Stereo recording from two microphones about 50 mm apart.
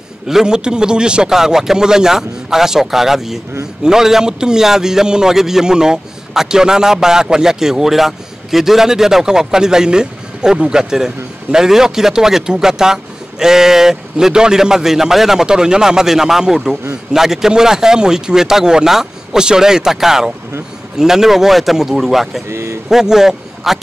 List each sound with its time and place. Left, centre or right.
0.3 s a man's voice: centre
22.5 s speech: right
22.8 s a man's voice: centre